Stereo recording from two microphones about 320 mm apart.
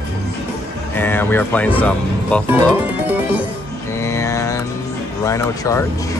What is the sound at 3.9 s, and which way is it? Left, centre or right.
Mantra, centre.